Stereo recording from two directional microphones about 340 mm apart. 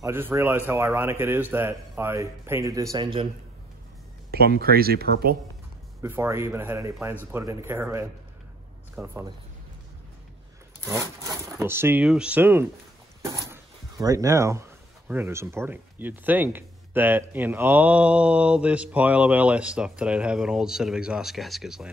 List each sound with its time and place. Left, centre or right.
0.0 s a man's voice: centre
4.3 s speech: right
6.0 s a man's voice: centre
10.9 s a man's voice: centre